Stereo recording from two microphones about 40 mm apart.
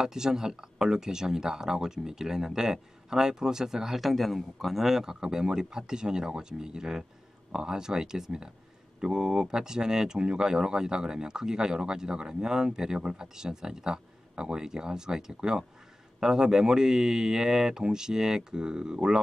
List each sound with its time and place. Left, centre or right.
0.0 s speech: centre
5.2 s speech: centre